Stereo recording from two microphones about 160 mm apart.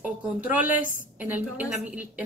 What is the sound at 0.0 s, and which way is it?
Speech, 10° right (ahead or behind).